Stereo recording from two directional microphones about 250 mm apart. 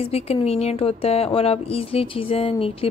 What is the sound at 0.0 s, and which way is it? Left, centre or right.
Speech, left.